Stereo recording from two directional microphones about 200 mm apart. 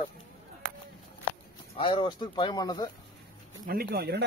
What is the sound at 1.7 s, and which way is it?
Speech, 25° left (ahead or behind).